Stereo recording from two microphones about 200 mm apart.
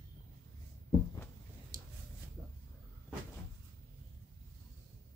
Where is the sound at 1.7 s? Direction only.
20° right (ahead or behind).